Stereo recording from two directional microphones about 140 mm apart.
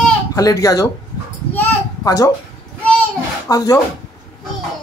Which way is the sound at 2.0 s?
25° left (ahead or behind).